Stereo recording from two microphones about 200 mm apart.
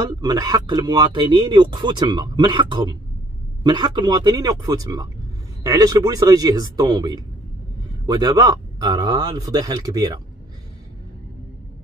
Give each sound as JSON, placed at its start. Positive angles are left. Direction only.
{"t": 0.0, "sound": "speech", "side_deg": -20}